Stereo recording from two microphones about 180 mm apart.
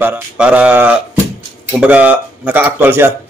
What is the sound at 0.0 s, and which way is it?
Speech, 10° right (ahead or behind).